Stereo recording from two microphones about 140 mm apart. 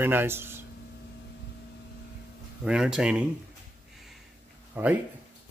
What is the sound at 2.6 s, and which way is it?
Speech, 5° right (ahead or behind).